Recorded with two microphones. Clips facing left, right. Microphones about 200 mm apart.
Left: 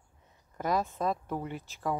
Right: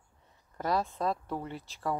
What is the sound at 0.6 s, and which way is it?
Speech, 15° left (ahead or behind).